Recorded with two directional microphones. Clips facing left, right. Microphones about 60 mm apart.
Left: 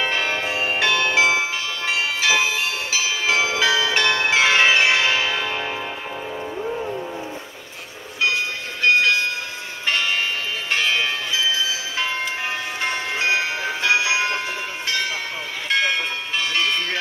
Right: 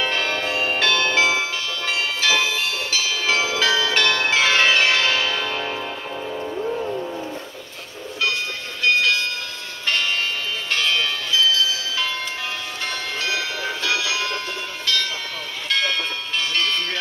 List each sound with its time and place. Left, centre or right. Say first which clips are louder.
0.0 s music: even; centre
8.2 s train: left 2 dB; left
9.8 s church bell: left 1 dB; centre
10.7 s bell: left 1 dB; left
14.9 s train: right 1 dB; left
15.7 s bell: left 2 dB; left